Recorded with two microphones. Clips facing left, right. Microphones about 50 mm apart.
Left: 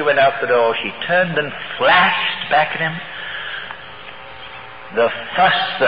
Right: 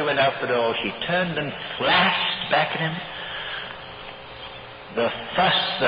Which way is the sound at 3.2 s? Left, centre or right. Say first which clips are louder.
Left 5 dB; left.